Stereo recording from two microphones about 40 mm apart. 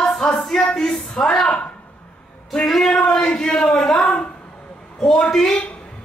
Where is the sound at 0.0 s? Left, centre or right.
Centre.